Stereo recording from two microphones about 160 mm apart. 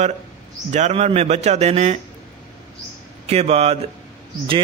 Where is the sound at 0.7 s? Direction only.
45° right (ahead or behind).